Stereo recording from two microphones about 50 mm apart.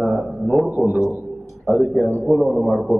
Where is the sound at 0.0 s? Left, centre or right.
Centre.